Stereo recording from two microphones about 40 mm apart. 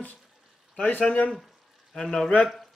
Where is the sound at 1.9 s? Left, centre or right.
Centre.